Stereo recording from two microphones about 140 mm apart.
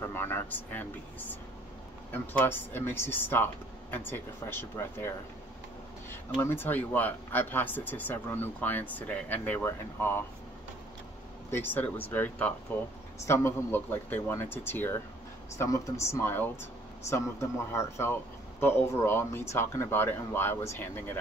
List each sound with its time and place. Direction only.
0.0 s speech: 15° left (ahead or behind)
2.1 s speech: 15° left (ahead or behind)
6.4 s speech: 15° left (ahead or behind)
11.5 s speech: 15° left (ahead or behind)